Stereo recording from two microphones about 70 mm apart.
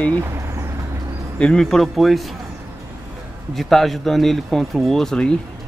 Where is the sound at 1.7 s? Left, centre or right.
Centre.